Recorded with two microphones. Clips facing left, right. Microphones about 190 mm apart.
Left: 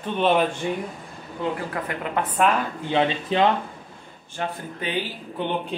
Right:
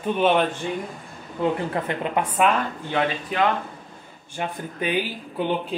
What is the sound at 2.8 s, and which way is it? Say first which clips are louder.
Speech: left 5 dB; 25° left (ahead or behind).